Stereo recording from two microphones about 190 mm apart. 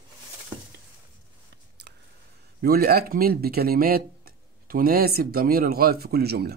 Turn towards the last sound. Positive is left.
turn(degrees=-55)  # may be behind; listen again after turning